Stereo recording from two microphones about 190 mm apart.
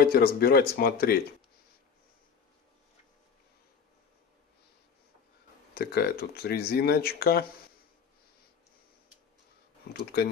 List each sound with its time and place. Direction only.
0.0 s speech: 55° left (ahead or behind)
5.8 s speech: 55° left (ahead or behind)